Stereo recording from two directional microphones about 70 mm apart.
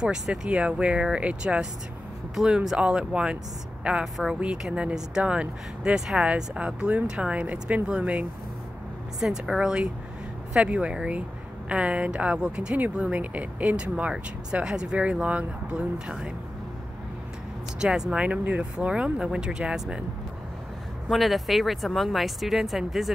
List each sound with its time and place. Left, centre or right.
0.0 s speech: centre
9.2 s speech: centre
17.7 s speech: centre
21.1 s speech: centre